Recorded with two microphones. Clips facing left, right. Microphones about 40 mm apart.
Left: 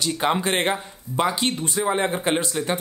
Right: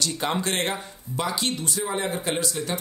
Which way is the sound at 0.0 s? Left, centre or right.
Centre.